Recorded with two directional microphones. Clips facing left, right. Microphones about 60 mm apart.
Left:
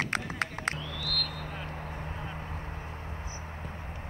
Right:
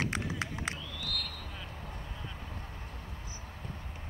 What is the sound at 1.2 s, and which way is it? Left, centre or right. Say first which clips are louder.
Vehicle: left 6 dB; left.